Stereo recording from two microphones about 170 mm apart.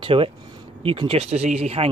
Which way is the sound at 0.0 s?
35° right (ahead or behind).